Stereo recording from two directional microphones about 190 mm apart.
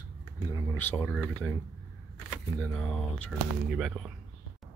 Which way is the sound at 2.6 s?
10° left (ahead or behind).